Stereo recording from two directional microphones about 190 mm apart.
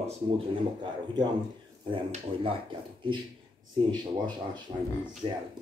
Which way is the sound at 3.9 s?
25° right (ahead or behind).